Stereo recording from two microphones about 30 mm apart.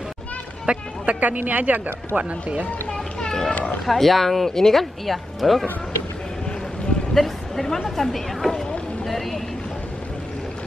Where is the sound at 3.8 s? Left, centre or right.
Centre.